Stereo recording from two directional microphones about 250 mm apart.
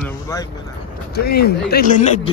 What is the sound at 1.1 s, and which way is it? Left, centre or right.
Speech, left.